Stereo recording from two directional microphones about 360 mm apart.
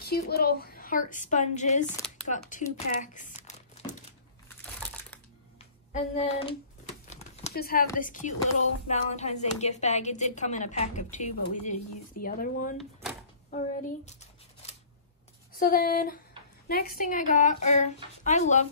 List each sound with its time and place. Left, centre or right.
0.0 s a woman's voice: left
4.5 s crumpling: centre
6.1 s a woman's voice: centre
13.5 s a sound: centre
15.6 s a woman's voice: left